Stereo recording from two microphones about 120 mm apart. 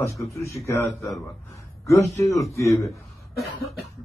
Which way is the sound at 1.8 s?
25° left (ahead or behind).